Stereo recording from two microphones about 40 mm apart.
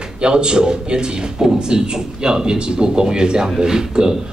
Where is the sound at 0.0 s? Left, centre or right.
Right.